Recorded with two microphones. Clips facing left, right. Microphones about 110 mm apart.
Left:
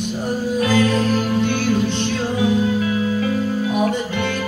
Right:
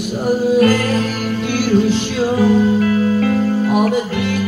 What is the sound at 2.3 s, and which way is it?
Music, 45° right (ahead or behind).